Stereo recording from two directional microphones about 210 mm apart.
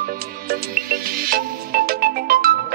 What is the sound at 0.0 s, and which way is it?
Music, 45° right (ahead or behind).